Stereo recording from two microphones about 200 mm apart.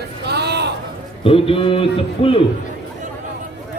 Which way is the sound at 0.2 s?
55° right (ahead or behind).